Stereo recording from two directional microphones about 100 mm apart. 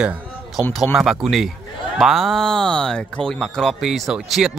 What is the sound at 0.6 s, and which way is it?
Speech, 10° right (ahead or behind).